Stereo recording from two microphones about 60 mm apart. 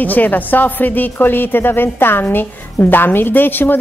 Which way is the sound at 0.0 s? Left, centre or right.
Left.